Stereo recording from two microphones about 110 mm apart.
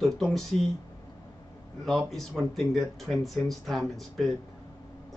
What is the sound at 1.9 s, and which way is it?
Speech, centre (ahead or behind).